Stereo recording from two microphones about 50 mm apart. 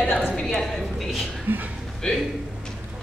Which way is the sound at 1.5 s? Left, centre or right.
Right.